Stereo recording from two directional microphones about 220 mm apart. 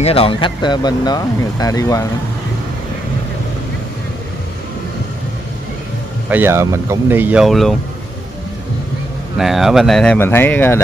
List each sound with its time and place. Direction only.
0.0 s speech: 25° left (ahead or behind)
6.3 s speech: 10° right (ahead or behind)
9.4 s speech: centre (ahead or behind)